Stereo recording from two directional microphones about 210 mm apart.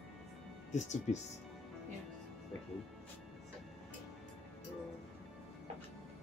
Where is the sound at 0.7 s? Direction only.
35° left (ahead or behind).